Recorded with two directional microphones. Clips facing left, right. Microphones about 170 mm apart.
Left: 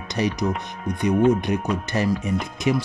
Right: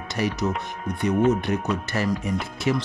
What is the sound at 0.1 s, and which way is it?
Speech, 20° left (ahead or behind).